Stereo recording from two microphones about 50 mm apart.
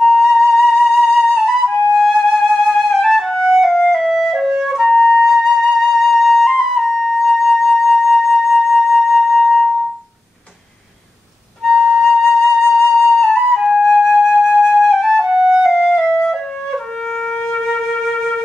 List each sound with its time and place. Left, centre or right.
0.0 s flute: centre
3.9 s music: centre
4.5 s flute: centre
4.7 s flute: centre
11.6 s flute: centre
15.2 s flute: right
15.6 s music: centre
16.2 s flute: centre